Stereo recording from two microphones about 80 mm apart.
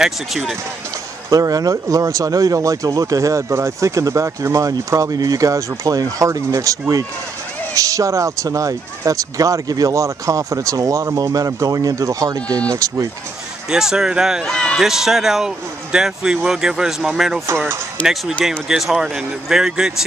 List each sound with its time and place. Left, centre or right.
0.0 s speech: centre
1.3 s speech: right
13.7 s speech: centre
14.4 s speech: centre
14.8 s speech: centre
18.7 s speech: centre